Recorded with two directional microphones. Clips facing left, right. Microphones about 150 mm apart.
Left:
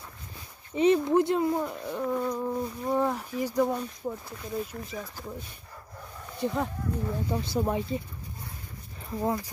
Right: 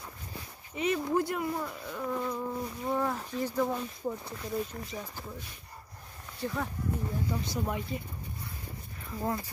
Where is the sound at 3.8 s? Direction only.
Centre (ahead or behind).